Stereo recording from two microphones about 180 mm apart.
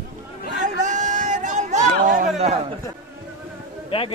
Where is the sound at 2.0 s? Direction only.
50° right (ahead or behind).